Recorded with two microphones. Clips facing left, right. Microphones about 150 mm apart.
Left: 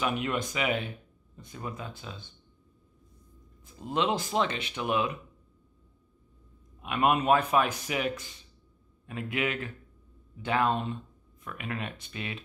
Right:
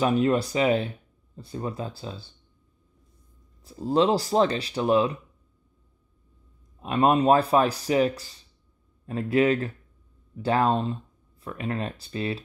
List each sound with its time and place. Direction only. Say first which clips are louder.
0.0 s speech: right 8 dB; 35° right (ahead or behind)
3.6 s speech: right 7 dB; 35° right (ahead or behind)
6.8 s speech: right 5 dB; 35° right (ahead or behind)